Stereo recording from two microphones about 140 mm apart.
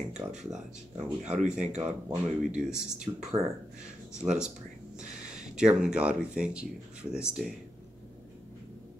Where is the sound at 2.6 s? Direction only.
5° right (ahead or behind).